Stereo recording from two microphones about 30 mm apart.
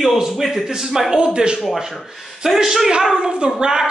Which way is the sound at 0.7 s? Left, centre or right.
Centre.